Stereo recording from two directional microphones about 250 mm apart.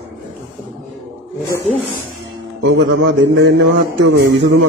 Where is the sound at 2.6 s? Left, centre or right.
Right.